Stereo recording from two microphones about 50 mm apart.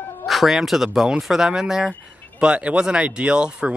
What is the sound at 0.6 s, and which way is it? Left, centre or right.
Speech, centre.